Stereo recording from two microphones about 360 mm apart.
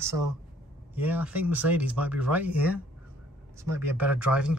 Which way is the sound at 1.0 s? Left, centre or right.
Centre.